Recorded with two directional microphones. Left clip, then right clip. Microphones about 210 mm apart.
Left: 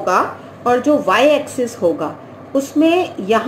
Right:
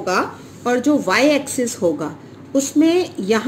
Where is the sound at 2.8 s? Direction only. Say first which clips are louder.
Left 2 dB; 40° right (ahead or behind).